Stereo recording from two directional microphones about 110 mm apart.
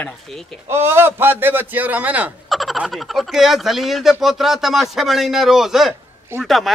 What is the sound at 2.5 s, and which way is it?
Fowl, centre (ahead or behind).